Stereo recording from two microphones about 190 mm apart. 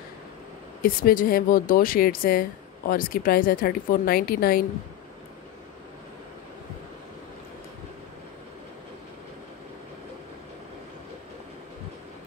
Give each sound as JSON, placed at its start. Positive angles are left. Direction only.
{"t": 0.8, "sound": "a woman's voice", "side_deg": 50}